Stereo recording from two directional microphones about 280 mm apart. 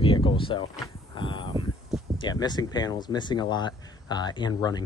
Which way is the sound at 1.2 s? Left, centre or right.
Centre.